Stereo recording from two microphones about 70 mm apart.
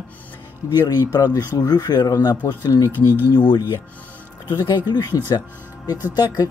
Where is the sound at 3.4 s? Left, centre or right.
Left.